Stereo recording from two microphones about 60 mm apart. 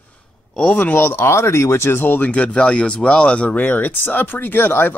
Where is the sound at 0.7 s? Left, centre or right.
Left.